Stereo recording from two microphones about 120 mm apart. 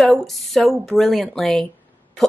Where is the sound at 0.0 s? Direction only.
Centre (ahead or behind).